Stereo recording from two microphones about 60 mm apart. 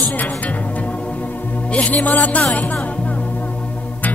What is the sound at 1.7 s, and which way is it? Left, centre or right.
Music, left.